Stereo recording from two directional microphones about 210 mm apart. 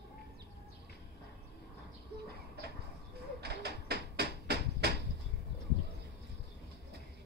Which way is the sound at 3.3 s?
50° right (ahead or behind).